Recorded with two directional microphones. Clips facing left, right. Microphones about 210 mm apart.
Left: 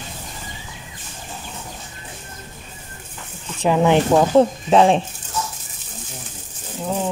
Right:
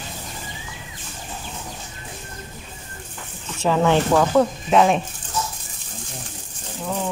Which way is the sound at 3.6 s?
15° left (ahead or behind).